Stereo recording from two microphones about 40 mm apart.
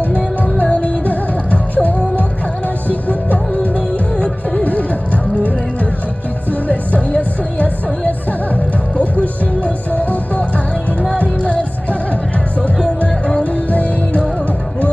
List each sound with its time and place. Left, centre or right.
0.0 s music: left
4.6 s music: left
6.7 s music: left
13.4 s music: left